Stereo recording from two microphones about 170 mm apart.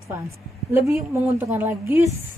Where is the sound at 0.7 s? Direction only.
15° right (ahead or behind).